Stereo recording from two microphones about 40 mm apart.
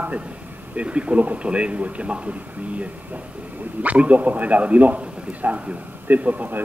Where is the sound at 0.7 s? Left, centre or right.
Right.